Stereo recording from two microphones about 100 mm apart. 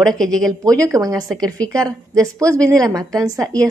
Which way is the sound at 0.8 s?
35° right (ahead or behind).